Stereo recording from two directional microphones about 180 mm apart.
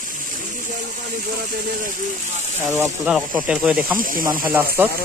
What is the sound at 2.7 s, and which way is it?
Speech, 10° right (ahead or behind).